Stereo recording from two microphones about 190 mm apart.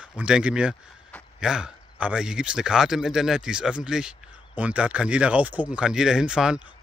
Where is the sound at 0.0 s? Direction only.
5° right (ahead or behind).